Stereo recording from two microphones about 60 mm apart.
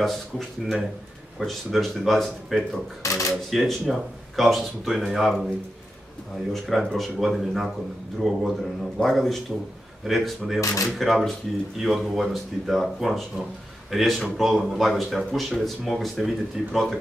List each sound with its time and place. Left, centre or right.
0.0 s speech: centre
3.0 s speech: left
3.4 s speech: centre
6.5 s speech: centre